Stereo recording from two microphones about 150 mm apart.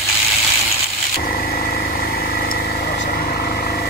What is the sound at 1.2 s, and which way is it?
Vehicle, 90° left.